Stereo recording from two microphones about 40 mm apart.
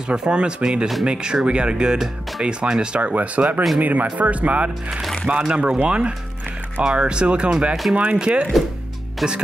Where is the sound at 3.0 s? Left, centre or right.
Right.